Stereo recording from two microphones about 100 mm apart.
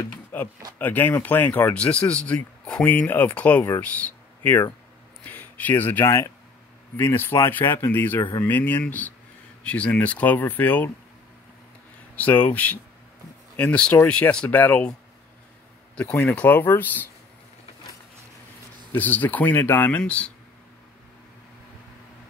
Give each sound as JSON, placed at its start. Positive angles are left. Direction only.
{"t": 0.3, "sound": "speech", "side_deg": 20}
{"t": 12.2, "sound": "speech", "side_deg": 15}
{"t": 16.0, "sound": "speech", "side_deg": 15}
{"t": 18.9, "sound": "speech", "side_deg": 15}